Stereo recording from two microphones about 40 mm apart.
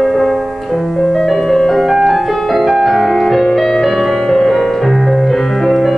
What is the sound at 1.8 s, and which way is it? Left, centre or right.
Music, centre.